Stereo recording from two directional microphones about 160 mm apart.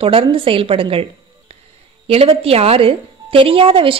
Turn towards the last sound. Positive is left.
turn(degrees=-35)  # may be behind; listen again after turning